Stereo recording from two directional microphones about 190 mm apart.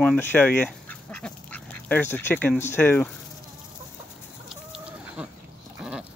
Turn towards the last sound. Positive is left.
turn(degrees=-5)  # may be behind; listen again after turning